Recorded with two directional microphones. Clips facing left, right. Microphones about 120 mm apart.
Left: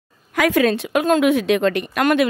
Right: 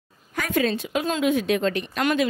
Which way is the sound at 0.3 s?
90° left.